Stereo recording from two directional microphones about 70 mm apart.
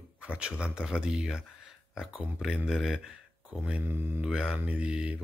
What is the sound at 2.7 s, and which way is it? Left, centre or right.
Speech, centre.